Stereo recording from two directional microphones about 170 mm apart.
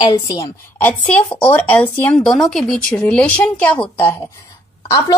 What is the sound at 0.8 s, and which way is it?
A woman's voice, 10° left (ahead or behind).